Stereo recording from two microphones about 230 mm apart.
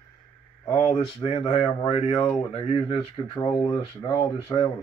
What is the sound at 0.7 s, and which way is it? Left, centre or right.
Speech, left.